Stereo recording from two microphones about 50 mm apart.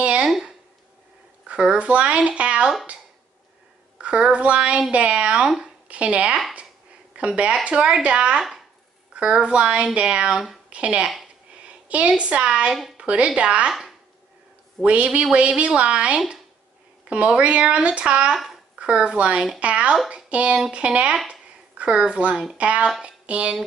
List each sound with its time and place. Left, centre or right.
0.2 s a sound: centre
1.5 s speech: right
4.0 s speech: right
8.4 s speech: centre
9.1 s speech: right
11.6 s a sound: right
12.2 s speech: right
14.8 s speech: right
18.3 s speech: centre
18.8 s speech: right
21.3 s a sound: right
22.6 s speech: right
23.0 s a sound: right